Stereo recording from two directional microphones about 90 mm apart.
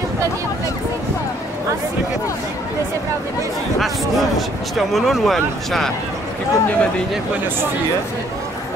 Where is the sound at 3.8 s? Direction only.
Centre (ahead or behind).